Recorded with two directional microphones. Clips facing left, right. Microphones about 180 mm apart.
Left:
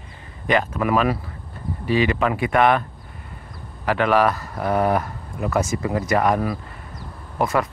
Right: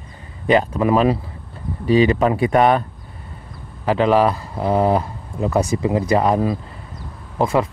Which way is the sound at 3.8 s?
25° right (ahead or behind).